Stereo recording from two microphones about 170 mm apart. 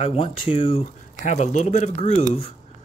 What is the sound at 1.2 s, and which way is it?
Speech, 45° left (ahead or behind).